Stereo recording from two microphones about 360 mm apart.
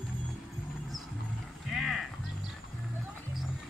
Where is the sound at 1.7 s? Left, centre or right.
Centre.